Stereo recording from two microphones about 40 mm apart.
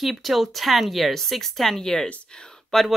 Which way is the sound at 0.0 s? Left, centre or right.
Centre.